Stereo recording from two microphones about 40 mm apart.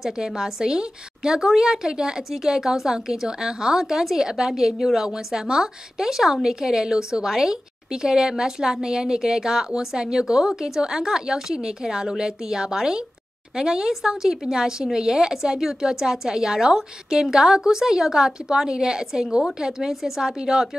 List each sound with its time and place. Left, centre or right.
0.0 s a woman's voice: centre